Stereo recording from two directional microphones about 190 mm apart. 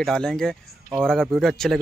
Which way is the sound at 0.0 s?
5° left (ahead or behind).